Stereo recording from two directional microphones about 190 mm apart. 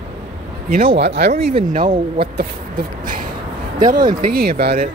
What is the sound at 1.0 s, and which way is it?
Speech, 60° right (ahead or behind).